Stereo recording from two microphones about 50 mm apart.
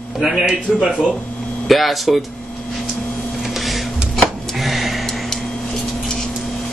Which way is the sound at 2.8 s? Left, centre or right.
Centre.